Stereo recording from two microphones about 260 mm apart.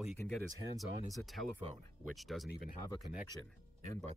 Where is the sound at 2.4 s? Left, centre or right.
Left.